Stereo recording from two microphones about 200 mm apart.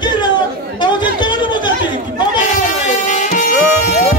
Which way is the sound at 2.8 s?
35° left (ahead or behind).